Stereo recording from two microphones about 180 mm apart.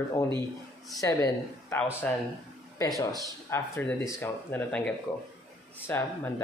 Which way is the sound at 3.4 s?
15° left (ahead or behind).